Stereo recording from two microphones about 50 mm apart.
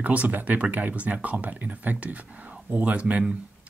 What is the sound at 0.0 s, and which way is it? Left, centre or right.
Speech, right.